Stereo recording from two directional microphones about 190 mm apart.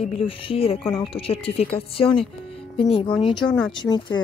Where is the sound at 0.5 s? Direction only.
30° left (ahead or behind).